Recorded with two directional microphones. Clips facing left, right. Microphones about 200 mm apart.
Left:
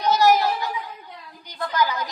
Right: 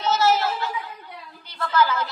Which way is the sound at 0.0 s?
15° left (ahead or behind).